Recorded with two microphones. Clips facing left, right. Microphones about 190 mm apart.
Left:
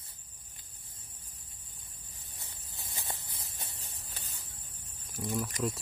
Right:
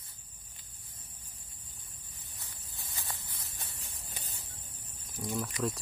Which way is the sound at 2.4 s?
20° left (ahead or behind).